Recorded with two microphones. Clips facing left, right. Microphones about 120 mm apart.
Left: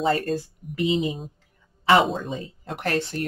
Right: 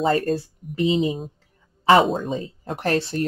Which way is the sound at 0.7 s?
30° right (ahead or behind).